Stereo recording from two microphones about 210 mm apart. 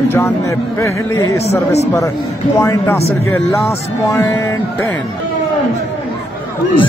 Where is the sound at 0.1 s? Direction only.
15° left (ahead or behind).